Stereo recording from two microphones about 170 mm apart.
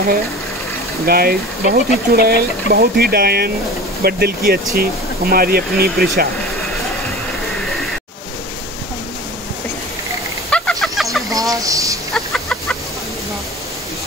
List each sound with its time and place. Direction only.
1.0 s speech: 65° right (ahead or behind)
10.5 s a sound: 5° left (ahead or behind)
11.2 s fowl: 20° right (ahead or behind)
12.1 s chicken: 5° left (ahead or behind)